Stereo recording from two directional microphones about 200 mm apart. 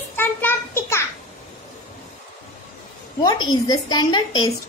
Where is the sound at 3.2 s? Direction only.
20° left (ahead or behind).